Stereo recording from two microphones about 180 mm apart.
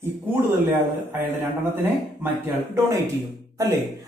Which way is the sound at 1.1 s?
10° right (ahead or behind).